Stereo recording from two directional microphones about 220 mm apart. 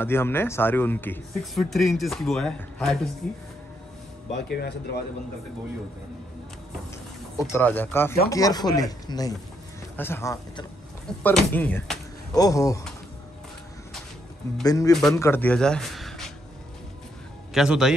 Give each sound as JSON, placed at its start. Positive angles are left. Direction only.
{"t": 0.0, "sound": "speech", "side_deg": 10}
{"t": 4.5, "sound": "speech", "side_deg": 50}
{"t": 7.3, "sound": "speech", "side_deg": 10}
{"t": 14.6, "sound": "speech", "side_deg": 15}
{"t": 14.9, "sound": "speech", "side_deg": 0}
{"t": 17.6, "sound": "speech", "side_deg": 0}